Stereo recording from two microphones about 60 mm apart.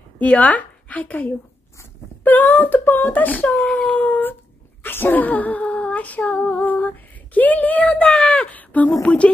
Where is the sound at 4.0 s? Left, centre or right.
Left.